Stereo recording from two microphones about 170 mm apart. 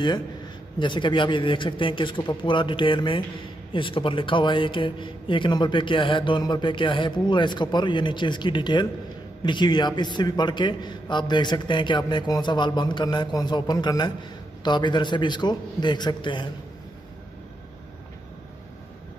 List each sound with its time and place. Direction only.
0.7 s speech: 30° left (ahead or behind)